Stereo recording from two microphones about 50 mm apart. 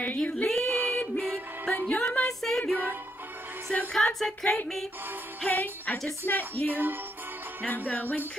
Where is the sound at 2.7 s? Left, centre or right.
Right.